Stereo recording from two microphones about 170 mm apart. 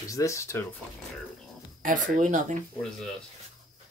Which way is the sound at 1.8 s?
50° right (ahead or behind).